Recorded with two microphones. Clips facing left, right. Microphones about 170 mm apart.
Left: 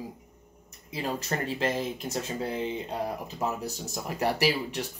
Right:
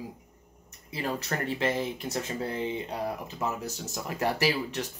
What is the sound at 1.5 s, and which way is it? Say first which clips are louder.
Speech: right 1 dB; 15° right (ahead or behind).